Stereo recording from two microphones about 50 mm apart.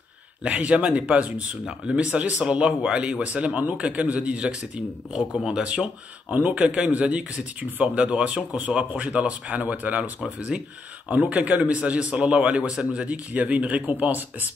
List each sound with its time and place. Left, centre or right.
0.4 s speech: right